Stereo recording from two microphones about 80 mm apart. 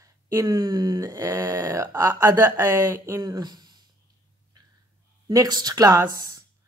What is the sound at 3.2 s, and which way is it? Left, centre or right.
Speech, right.